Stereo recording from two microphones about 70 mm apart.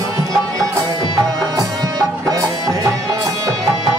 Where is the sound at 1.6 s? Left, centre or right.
Right.